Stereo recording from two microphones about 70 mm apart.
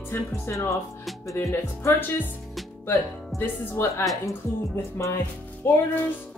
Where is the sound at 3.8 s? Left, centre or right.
Left.